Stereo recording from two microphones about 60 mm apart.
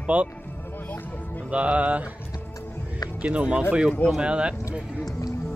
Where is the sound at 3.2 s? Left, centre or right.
Centre.